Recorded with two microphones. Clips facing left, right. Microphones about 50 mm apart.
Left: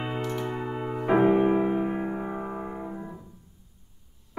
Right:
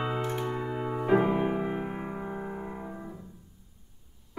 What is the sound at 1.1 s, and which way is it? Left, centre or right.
Music, centre.